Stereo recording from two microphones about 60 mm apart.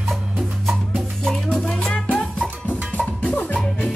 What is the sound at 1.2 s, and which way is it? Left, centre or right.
Music, centre.